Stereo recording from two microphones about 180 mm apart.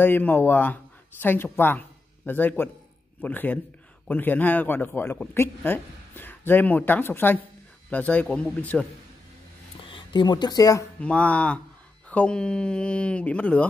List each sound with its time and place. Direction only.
0.0 s a man's voice: 10° left (ahead or behind)
9.8 s speech: 30° left (ahead or behind)
11.0 s a man's voice: 10° left (ahead or behind)